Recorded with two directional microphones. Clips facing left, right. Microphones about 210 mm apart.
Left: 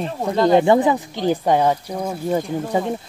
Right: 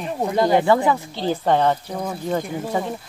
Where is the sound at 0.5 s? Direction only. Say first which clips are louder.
Left 4 dB; 20° left (ahead or behind).